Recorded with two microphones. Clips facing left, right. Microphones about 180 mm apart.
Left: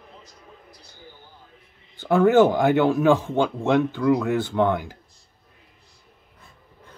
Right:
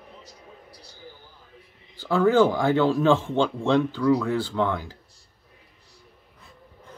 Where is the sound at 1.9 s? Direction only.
20° left (ahead or behind).